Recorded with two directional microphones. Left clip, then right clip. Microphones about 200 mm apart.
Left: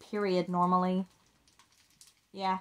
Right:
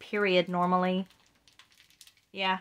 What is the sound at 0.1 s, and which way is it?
Speech, 20° right (ahead or behind).